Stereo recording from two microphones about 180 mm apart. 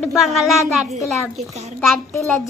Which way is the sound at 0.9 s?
35° right (ahead or behind).